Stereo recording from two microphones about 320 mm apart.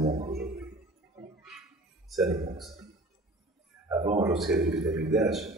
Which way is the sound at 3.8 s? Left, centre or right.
Centre.